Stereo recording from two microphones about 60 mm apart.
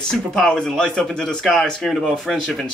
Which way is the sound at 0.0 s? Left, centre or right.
Centre.